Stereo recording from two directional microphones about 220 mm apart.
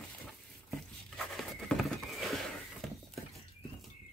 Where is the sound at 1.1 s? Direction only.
Centre (ahead or behind).